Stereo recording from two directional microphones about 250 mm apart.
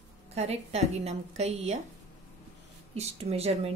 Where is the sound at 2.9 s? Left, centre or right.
Right.